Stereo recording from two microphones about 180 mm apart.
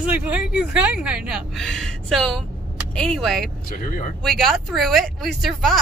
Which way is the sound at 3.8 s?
50° left (ahead or behind).